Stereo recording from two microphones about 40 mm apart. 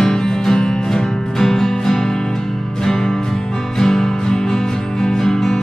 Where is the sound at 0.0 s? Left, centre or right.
Centre.